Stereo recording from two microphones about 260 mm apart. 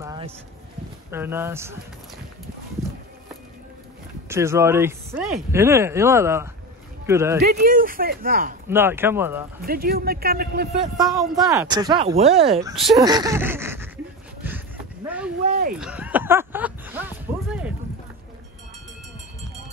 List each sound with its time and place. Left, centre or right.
0.0 s a sound: centre
1.1 s speech: centre
4.3 s speech: centre
7.4 s speech: right
8.6 s speech: centre
9.7 s speech: right
11.0 s speech: centre
12.9 s a sound: centre
15.4 s a sound: right
15.8 s music: centre